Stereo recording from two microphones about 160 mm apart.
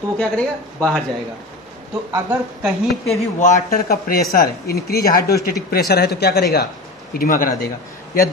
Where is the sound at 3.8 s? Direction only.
70° left (ahead or behind); by 6.6 s 90° left.